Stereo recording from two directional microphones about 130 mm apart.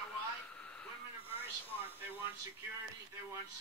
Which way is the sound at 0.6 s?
10° left (ahead or behind).